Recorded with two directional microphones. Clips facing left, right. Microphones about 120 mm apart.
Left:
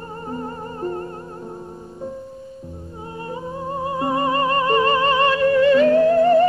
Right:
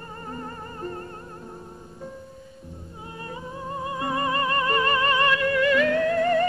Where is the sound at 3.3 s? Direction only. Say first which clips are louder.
Left 6 dB; 30° left (ahead or behind).